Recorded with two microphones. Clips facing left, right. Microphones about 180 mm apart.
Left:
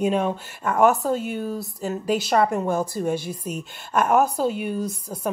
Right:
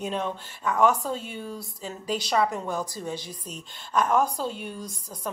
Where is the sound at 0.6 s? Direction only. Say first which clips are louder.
Left 4 dB; 50° left (ahead or behind).